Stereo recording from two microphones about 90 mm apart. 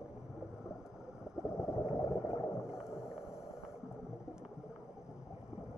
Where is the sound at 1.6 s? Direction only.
5° right (ahead or behind).